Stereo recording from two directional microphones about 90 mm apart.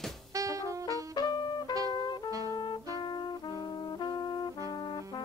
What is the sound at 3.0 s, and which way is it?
Brass instrument, 55° left (ahead or behind).